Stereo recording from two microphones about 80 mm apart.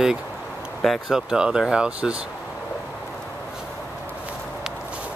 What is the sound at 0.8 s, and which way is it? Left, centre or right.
Speech, centre.